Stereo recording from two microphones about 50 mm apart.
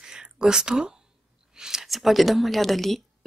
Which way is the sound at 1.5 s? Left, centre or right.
Centre.